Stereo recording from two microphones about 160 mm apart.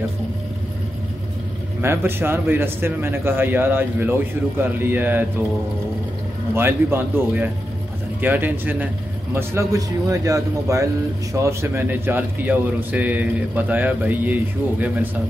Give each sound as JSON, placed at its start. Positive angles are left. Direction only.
{"t": 1.8, "sound": "a man's voice", "side_deg": -15}
{"t": 6.5, "sound": "a man's voice", "side_deg": -15}